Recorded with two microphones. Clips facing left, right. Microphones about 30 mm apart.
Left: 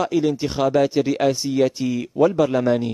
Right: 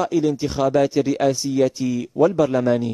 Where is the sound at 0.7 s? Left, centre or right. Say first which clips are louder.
Even; centre.